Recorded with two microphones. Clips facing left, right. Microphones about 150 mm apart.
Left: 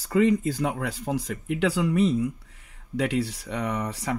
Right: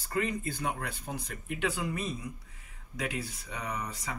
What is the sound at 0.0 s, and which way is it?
Speech, 90° left.